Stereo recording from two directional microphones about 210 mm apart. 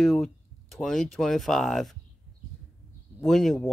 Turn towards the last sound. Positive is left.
turn(degrees=5)  # may be behind; listen again after turning